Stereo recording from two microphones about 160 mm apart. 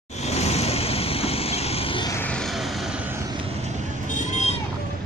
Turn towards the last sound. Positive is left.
turn(degrees=45)  # may be behind; listen again after turning